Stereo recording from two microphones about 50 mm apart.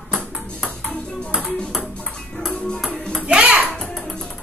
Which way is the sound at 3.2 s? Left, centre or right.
Right.